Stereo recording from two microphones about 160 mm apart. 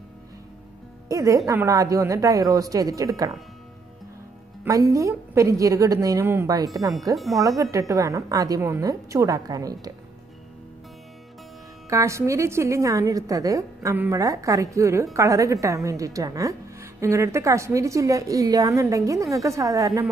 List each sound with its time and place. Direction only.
1.0 s a woman's voice: 20° right (ahead or behind)
4.6 s a woman's voice: 20° right (ahead or behind)
11.9 s a woman's voice: 20° right (ahead or behind)